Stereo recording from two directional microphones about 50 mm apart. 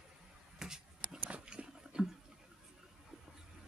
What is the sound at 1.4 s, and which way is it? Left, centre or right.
Dog, centre.